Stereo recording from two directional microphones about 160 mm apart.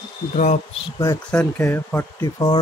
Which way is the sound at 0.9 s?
20° left (ahead or behind).